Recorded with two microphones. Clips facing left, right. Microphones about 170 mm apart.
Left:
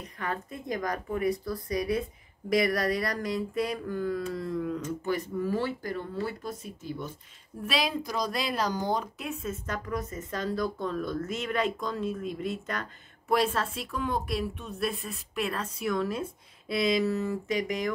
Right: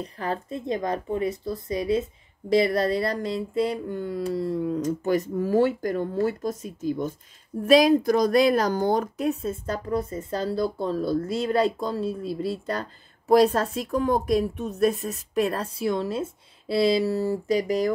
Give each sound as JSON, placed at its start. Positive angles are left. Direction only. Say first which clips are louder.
{"t": 0.0, "sound": "a woman's voice", "louder": "right 5 dB", "side_deg": -30}